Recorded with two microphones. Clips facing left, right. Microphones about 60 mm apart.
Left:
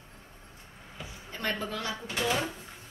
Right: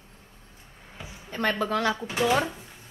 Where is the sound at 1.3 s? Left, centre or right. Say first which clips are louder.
Right 7 dB; right.